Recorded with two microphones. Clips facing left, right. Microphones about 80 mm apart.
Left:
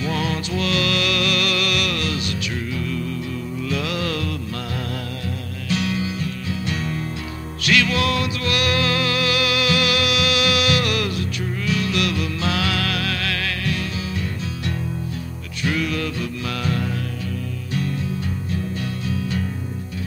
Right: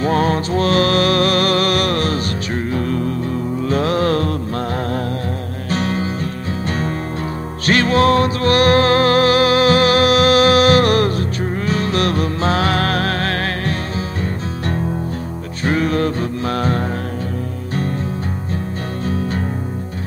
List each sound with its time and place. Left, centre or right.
0.0 s music: right
5.7 s music: right
15.6 s music: right
19.0 s music: right